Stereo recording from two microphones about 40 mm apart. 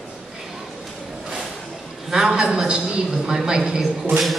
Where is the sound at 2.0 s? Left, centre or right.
Centre.